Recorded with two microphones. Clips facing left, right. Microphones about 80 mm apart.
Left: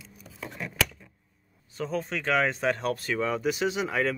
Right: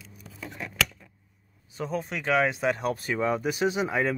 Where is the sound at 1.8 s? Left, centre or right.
Centre.